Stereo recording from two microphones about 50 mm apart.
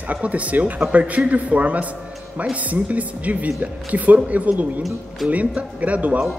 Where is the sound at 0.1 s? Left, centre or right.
Right.